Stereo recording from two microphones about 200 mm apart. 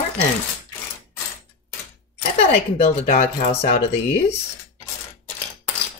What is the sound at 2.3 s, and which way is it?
Speech, 30° left (ahead or behind).